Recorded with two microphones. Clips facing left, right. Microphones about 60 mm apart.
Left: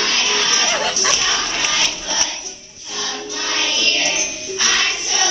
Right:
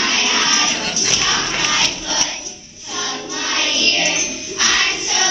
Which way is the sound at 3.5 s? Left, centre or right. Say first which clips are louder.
Right 1 dB; centre.